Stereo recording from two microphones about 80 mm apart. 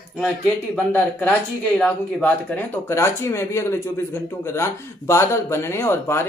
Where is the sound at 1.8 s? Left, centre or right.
Centre.